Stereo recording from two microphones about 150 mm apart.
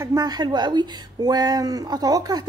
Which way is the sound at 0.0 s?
25° right (ahead or behind).